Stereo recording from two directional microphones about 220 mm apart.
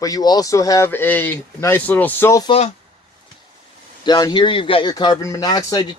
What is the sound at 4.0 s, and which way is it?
A man's voice, 20° left (ahead or behind).